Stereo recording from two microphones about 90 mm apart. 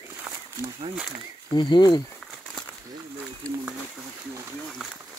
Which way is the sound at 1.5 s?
55° left (ahead or behind).